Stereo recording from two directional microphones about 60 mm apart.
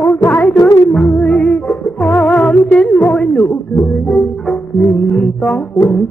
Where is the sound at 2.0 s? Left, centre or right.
Left.